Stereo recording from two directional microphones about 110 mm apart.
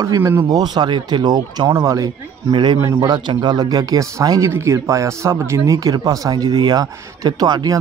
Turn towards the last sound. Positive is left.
turn(degrees=-35)  # may be behind; listen again after turning